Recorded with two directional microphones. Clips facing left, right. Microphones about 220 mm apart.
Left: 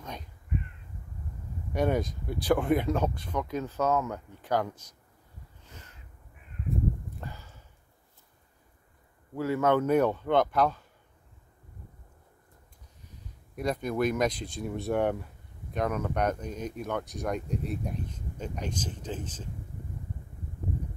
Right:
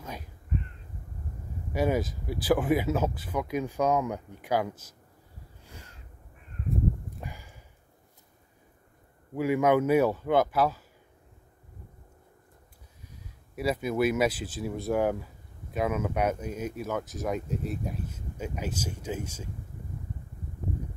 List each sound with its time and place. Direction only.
0.0 s speech: 5° right (ahead or behind)
1.7 s speech: 5° right (ahead or behind)
5.6 s caw: 10° right (ahead or behind)
7.2 s a sound: 15° right (ahead or behind)
9.3 s speech: 15° right (ahead or behind)
13.6 s speech: 5° right (ahead or behind)